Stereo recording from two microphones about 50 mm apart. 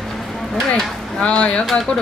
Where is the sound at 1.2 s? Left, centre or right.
Left.